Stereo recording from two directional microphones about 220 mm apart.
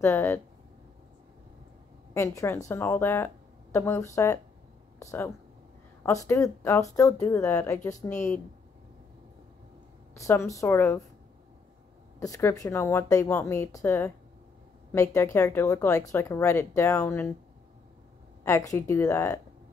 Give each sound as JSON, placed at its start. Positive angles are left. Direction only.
{"t": 0.0, "sound": "speech", "side_deg": 10}
{"t": 2.1, "sound": "speech", "side_deg": 15}
{"t": 6.2, "sound": "speech", "side_deg": 15}
{"t": 7.9, "sound": "speech", "side_deg": 35}
{"t": 10.1, "sound": "speech", "side_deg": 15}
{"t": 12.2, "sound": "speech", "side_deg": 15}
{"t": 18.4, "sound": "speech", "side_deg": 15}